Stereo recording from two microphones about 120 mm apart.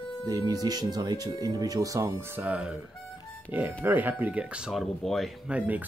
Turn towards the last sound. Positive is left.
turn(degrees=-15)  # may be behind; listen again after turning